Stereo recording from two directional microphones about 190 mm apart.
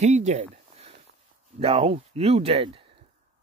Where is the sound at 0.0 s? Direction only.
35° right (ahead or behind).